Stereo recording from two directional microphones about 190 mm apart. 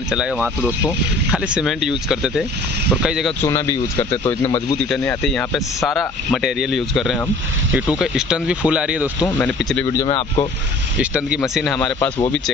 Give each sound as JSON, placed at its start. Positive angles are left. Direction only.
{"t": 0.1, "sound": "speech", "side_deg": -5}
{"t": 3.4, "sound": "speech", "side_deg": 15}
{"t": 5.2, "sound": "speech", "side_deg": 0}
{"t": 9.4, "sound": "speech", "side_deg": 5}
{"t": 10.0, "sound": "speech", "side_deg": 25}
{"t": 11.0, "sound": "speech", "side_deg": -5}